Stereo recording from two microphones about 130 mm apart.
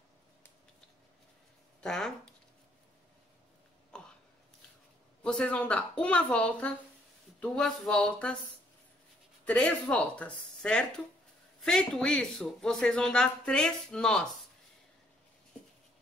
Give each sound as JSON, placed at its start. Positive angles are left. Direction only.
{"t": 1.8, "sound": "speech", "side_deg": 5}
{"t": 3.9, "sound": "a sound", "side_deg": 5}
{"t": 5.2, "sound": "speech", "side_deg": 10}
{"t": 9.4, "sound": "speech", "side_deg": 10}